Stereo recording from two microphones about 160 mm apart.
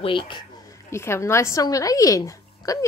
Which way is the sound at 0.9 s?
15° left (ahead or behind).